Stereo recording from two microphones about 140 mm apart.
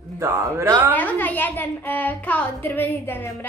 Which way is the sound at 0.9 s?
10° left (ahead or behind).